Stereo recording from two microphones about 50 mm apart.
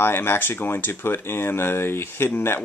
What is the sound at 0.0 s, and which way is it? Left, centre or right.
Speech, left.